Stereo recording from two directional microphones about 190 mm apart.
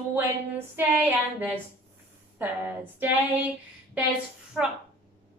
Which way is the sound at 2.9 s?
10° right (ahead or behind).